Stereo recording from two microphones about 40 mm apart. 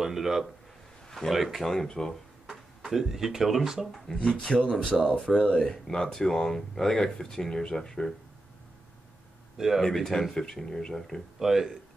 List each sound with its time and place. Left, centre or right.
0.0 s speech: centre
1.7 s speech: centre
2.8 s speech: centre
4.1 s speech: centre
4.8 s speech: centre
5.5 s speech: centre
9.8 s speech: centre
11.3 s speech: centre